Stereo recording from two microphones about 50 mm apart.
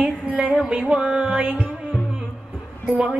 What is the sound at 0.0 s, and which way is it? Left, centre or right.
Music, right.